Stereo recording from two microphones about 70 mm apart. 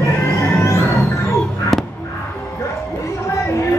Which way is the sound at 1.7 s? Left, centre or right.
Centre.